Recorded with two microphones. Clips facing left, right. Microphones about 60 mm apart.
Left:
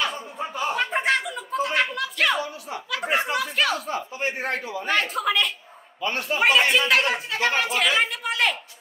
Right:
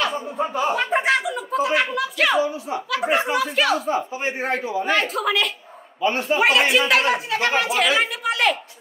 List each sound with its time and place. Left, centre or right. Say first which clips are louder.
0.0 s a sound: right 5 dB; centre
2.9 s speech: right 3 dB; centre
3.8 s a man's voice: right 4 dB; centre
4.9 s speech: even; centre
5.9 s a man's voice: right 6 dB; right
6.2 s speech: even; centre